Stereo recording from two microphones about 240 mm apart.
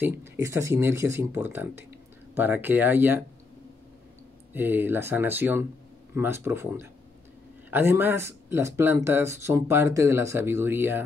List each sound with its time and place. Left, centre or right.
0.0 s speech: centre
4.6 s speech: centre